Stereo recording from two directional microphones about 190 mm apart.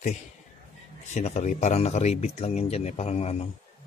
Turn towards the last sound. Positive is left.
turn(degrees=35)  # may be behind; listen again after turning